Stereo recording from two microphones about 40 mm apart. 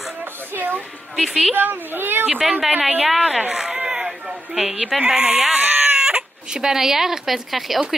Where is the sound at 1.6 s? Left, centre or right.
Right.